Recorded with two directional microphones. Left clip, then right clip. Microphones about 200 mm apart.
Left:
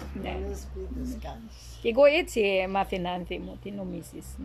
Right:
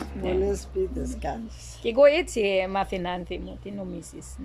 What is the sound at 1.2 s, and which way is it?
Speech, 35° right (ahead or behind).